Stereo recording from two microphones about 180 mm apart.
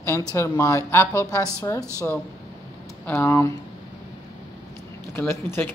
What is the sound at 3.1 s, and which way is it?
Speech, 15° left (ahead or behind).